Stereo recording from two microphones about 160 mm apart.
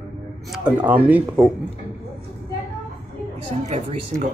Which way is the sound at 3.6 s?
45° right (ahead or behind).